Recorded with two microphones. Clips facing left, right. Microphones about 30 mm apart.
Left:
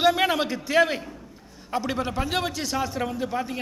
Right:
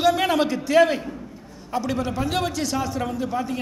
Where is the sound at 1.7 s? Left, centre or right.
Centre.